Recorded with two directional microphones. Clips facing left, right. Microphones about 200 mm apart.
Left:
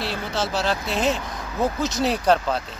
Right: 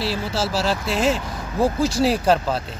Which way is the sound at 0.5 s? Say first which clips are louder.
Right 2 dB; 5° right (ahead or behind).